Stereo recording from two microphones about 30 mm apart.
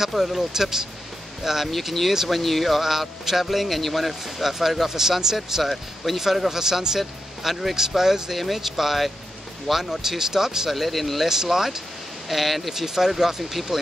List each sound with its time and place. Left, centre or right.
0.1 s speech: centre
0.4 s speech: centre
1.7 s speech: centre
2.8 s speech: centre
5.6 s speech: centre
10.7 s speech: centre
11.4 s speech: centre
12.3 s speech: centre
12.7 s speech: centre